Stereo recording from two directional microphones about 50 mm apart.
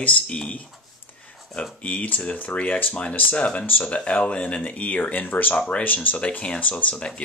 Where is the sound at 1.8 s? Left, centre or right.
Left.